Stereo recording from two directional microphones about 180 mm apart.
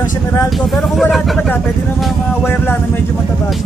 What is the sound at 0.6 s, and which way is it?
Speech, centre (ahead or behind).